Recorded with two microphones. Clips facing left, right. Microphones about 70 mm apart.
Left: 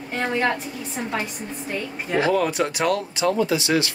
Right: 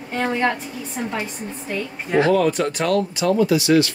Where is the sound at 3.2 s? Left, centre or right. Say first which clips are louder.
Right 2 dB; left.